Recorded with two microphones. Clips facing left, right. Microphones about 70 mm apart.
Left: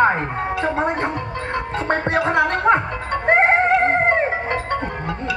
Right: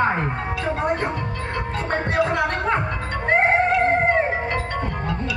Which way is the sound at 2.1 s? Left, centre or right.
Left.